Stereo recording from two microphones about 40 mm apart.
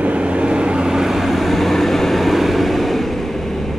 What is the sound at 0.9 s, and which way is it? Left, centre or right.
Vehicle, centre.